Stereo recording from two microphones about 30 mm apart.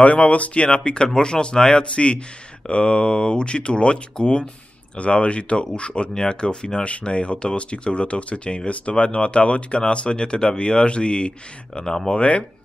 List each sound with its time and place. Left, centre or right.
0.0 s speech: left
2.0 s speech: left
6.8 s speech: left